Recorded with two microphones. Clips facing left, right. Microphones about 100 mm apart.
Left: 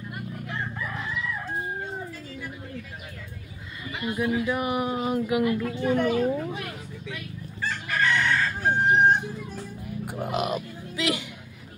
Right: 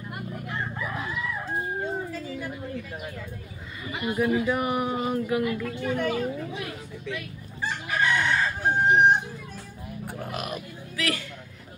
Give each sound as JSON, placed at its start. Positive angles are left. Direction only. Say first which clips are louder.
{"t": 0.5, "sound": "crowing", "louder": "right 1 dB", "side_deg": -10}
{"t": 3.9, "sound": "a sound", "louder": "right 1 dB", "side_deg": -15}
{"t": 4.2, "sound": "speech", "louder": "right 2 dB", "side_deg": 0}
{"t": 5.6, "sound": "speech", "louder": "left 3 dB", "side_deg": 25}
{"t": 7.6, "sound": "chicken", "louder": "even", "side_deg": -15}
{"t": 10.0, "sound": "a sound", "louder": "left 6 dB", "side_deg": 20}